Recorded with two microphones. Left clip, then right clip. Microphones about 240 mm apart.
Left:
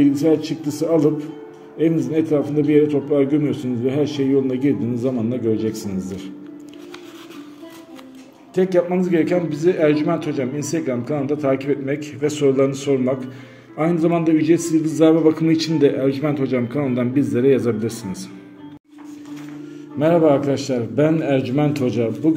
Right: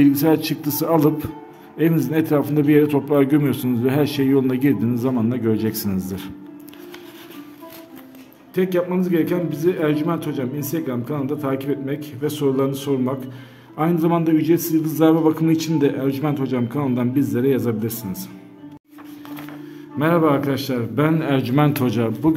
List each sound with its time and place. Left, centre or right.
0.0 s a man's voice: right
8.5 s a man's voice: centre
20.0 s a man's voice: centre